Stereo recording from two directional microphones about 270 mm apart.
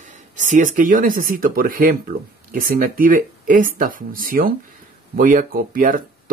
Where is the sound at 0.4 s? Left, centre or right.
Right.